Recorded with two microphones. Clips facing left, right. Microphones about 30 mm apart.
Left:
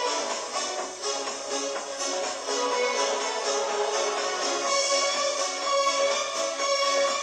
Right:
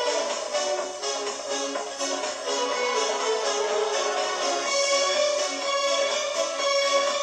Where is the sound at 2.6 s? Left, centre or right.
Centre.